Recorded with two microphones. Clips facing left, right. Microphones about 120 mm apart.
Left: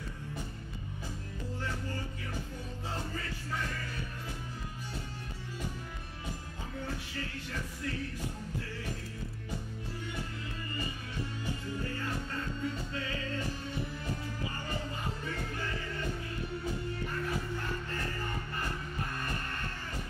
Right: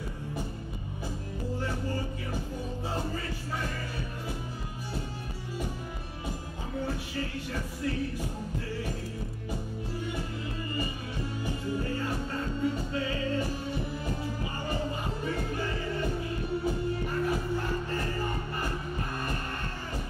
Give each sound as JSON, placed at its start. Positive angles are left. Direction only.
{"t": 3.1, "sound": "music", "side_deg": -25}
{"t": 6.7, "sound": "music", "side_deg": -25}
{"t": 11.6, "sound": "music", "side_deg": -20}